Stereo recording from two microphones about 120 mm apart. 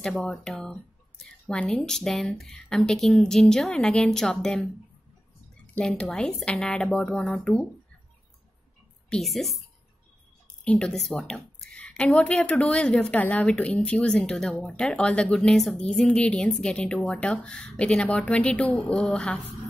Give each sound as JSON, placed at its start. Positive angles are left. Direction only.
{"t": 0.0, "sound": "speech", "side_deg": 5}
{"t": 5.8, "sound": "a woman's voice", "side_deg": 10}
{"t": 9.1, "sound": "speech", "side_deg": 0}
{"t": 10.6, "sound": "a woman's voice", "side_deg": 5}